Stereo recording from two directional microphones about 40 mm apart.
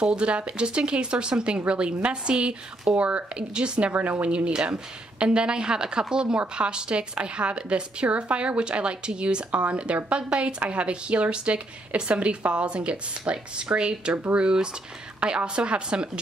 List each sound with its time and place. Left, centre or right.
0.0 s speech: right
3.9 s a woman's voice: right
4.5 s speech: right